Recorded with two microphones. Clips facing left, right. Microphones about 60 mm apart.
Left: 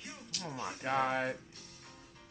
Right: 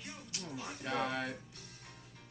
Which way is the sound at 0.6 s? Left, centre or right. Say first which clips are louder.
Left 5 dB; left.